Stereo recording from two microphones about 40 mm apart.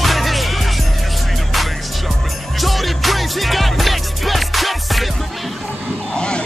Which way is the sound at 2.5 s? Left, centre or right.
Centre.